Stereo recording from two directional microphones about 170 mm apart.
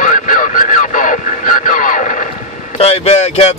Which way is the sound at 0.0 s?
50° left (ahead or behind).